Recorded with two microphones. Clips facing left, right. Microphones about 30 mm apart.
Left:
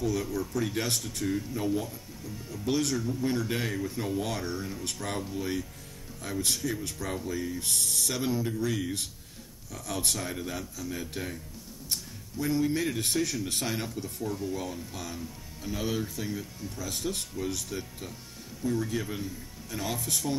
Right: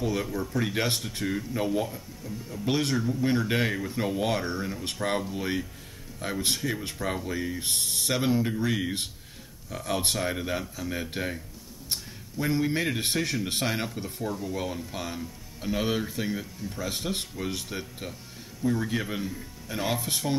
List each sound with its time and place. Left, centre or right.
0.0 s speech: right